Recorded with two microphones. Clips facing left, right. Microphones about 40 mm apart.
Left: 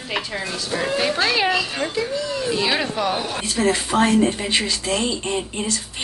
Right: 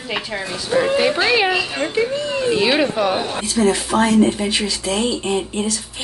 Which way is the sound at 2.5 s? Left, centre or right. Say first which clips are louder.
Right 5 dB; centre.